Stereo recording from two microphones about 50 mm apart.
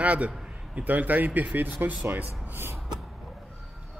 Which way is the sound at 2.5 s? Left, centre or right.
Right.